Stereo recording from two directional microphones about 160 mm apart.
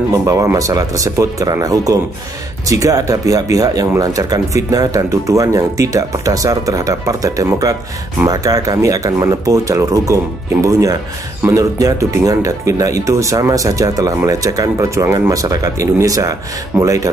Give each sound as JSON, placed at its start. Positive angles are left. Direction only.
{"t": 0.1, "sound": "speech", "side_deg": -20}